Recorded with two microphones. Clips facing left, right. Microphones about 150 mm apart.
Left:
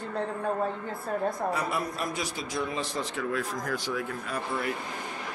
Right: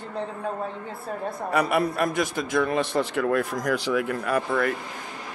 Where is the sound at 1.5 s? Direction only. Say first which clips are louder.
Right 8 dB; 70° right (ahead or behind).